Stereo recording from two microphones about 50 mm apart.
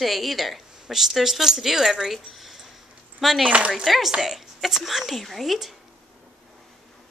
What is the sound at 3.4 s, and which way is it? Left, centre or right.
Speech, right.